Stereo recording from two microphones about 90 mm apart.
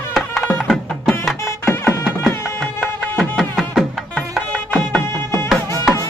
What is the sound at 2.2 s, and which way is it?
Music, 5° right (ahead or behind).